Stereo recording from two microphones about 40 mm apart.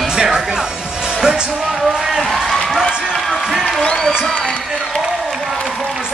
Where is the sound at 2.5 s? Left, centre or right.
Centre.